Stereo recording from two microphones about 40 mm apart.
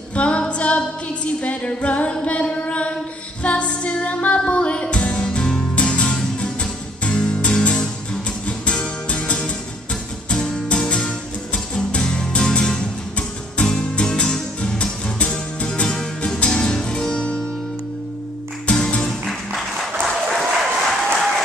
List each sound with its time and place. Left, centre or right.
0.1 s female singing: left
0.5 s music: left
2.7 s a sound: left
3.4 s music: left
10.7 s music: left
13.6 s music: left
18.7 s music: centre
19.2 s music: centre
20.3 s applause: centre